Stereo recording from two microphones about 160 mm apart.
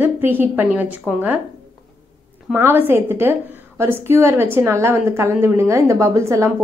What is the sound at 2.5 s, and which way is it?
A woman's voice, 15° right (ahead or behind).